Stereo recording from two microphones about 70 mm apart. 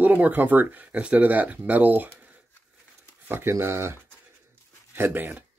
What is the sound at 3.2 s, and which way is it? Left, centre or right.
Speech, right.